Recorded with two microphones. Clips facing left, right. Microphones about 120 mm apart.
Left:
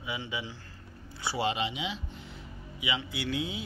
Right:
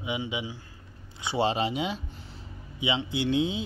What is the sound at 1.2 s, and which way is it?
Speech, 30° right (ahead or behind).